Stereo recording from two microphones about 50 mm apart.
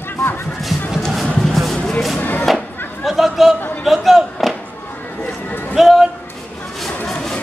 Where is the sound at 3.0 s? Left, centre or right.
Centre.